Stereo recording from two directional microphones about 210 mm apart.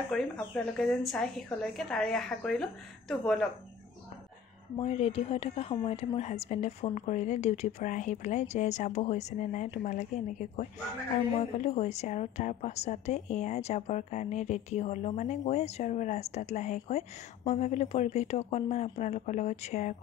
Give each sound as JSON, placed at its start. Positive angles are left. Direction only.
{"t": 0.1, "sound": "a woman's voice", "side_deg": 0}
{"t": 4.7, "sound": "a woman's voice", "side_deg": 30}